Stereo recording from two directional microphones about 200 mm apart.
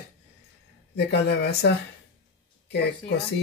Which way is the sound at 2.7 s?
55° left (ahead or behind).